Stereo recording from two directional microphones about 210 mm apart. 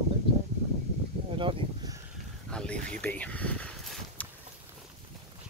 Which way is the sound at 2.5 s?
5° left (ahead or behind).